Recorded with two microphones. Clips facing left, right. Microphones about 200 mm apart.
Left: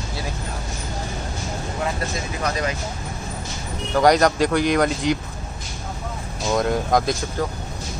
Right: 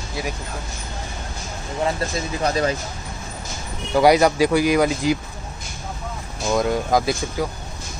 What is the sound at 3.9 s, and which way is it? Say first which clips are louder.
Speech: right 1 dB; 5° right (ahead or behind).